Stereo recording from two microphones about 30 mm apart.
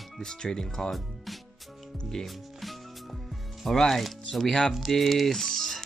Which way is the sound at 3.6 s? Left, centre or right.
Centre.